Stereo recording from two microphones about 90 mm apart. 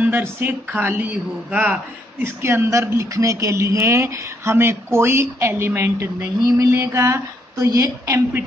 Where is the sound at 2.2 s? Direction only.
25° right (ahead or behind).